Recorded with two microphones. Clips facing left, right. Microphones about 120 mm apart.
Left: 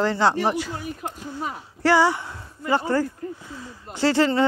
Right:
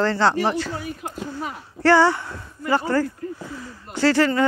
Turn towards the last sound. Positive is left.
turn(degrees=25)  # may be behind; listen again after turning